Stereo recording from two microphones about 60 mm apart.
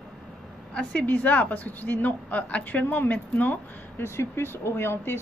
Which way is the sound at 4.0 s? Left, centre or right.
Left.